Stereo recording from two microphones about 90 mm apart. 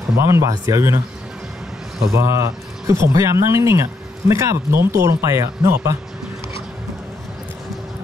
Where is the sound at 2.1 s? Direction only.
35° right (ahead or behind).